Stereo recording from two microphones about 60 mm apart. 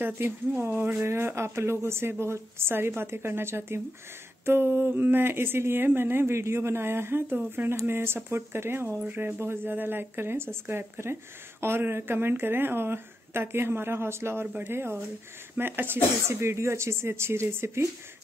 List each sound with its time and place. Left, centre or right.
0.0 s a woman's voice: right